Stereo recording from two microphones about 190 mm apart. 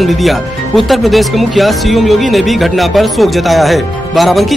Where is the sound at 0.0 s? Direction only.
Centre (ahead or behind).